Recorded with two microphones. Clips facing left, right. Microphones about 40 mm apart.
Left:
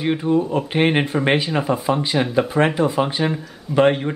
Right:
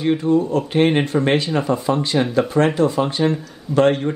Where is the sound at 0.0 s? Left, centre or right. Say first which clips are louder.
Right 2 dB; centre.